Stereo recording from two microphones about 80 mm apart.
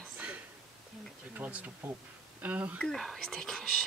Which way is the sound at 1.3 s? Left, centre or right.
Centre.